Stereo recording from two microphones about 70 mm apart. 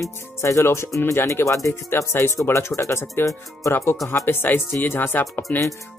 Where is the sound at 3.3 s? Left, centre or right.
Left.